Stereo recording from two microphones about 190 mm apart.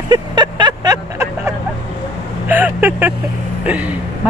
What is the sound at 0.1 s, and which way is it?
Vehicle, 25° right (ahead or behind).